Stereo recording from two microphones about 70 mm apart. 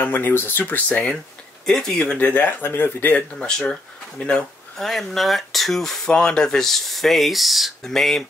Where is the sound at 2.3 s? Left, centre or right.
Left.